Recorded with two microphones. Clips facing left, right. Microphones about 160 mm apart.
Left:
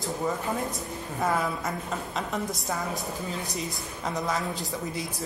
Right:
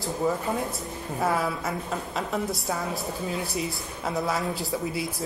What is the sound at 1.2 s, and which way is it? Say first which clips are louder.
Speech: right 1 dB; 5° right (ahead or behind).